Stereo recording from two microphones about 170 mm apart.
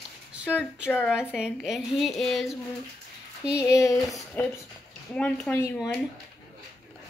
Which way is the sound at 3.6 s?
15° left (ahead or behind).